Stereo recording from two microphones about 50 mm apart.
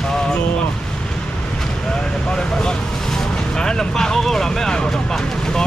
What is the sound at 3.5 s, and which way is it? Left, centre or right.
Vehicle, centre.